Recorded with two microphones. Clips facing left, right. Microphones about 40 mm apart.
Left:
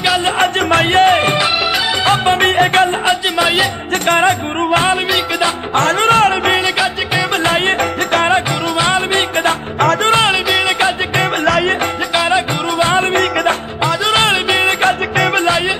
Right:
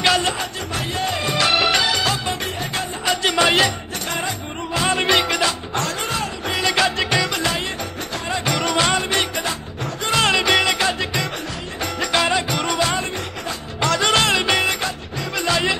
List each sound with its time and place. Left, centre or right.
0.4 s music: left
3.3 s music: centre
4.1 s music: left
8.7 s music: left
12.3 s music: left
14.1 s music: left